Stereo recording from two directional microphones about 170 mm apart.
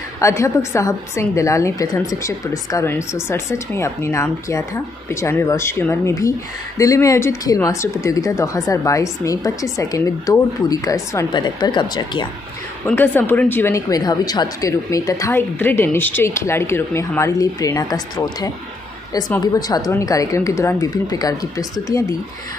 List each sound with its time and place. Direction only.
0.2 s a woman's voice: 15° left (ahead or behind)
12.8 s a woman's voice: 10° left (ahead or behind)